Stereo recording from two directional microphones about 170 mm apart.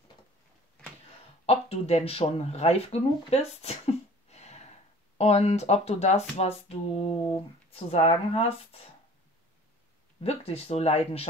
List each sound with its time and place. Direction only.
1.4 s speech: 35° left (ahead or behind)
10.2 s speech: 35° left (ahead or behind)